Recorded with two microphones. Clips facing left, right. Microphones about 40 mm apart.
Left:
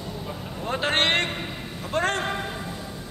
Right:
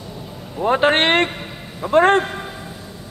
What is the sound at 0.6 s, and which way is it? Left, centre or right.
Speech, right.